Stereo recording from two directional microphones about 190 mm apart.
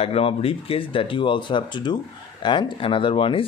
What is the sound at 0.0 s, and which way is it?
Speech, 30° left (ahead or behind).